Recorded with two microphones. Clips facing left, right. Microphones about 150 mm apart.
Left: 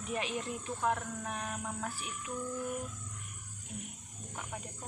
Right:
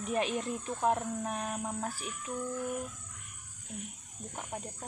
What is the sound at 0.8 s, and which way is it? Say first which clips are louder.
Speech: right 4 dB; 30° right (ahead or behind).